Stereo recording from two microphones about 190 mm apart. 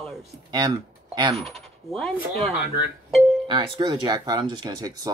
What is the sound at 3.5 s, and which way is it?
Speech, 25° right (ahead or behind).